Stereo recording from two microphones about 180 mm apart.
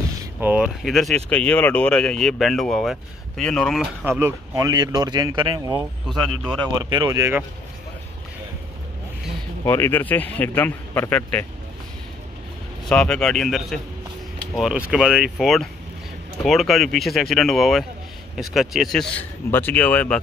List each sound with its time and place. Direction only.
0.4 s speech: 5° right (ahead or behind)
4.0 s speech: 15° right (ahead or behind)
6.0 s speech: centre (ahead or behind)
6.7 s speech: 25° right (ahead or behind)
9.7 s a man's voice: 15° left (ahead or behind)
12.8 s speech: 5° left (ahead or behind)